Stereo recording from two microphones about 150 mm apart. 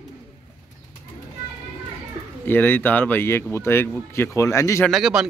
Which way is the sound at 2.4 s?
15° left (ahead or behind).